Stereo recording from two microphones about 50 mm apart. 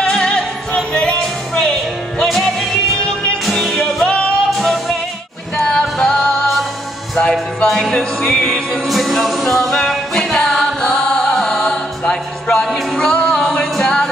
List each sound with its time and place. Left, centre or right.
0.0 s music: centre
5.6 s music: centre